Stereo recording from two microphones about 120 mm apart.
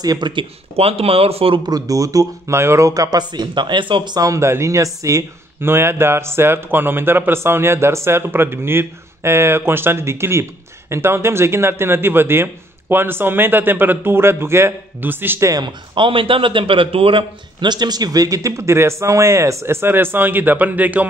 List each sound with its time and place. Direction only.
0.0 s speech: 35° right (ahead or behind); by 1.6 s 55° right (ahead or behind)
1.7 s speech: 30° right (ahead or behind)
15.5 s speech: 40° right (ahead or behind); by 21.0 s 15° right (ahead or behind)